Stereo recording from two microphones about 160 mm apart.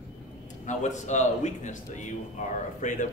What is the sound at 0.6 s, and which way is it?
A man's voice, 50° left (ahead or behind).